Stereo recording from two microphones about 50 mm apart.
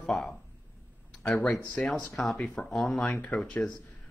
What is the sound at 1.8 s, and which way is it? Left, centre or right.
Speech, left.